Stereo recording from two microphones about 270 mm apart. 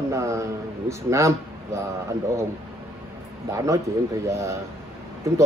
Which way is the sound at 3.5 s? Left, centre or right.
Centre.